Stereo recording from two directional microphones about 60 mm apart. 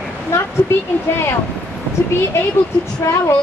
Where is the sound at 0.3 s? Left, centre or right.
Left.